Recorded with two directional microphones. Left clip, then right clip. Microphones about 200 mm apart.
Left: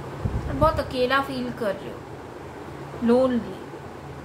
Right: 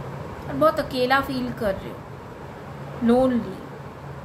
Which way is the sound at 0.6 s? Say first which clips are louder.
Right 2 dB; 15° right (ahead or behind).